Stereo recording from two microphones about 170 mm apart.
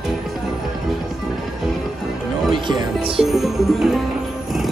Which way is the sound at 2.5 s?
25° right (ahead or behind).